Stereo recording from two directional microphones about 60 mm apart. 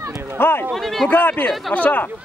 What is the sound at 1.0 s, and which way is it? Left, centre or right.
Speech, left.